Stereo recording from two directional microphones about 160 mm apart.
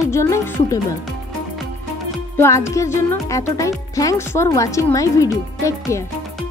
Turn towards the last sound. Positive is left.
turn(degrees=20)  # may be behind; listen again after turning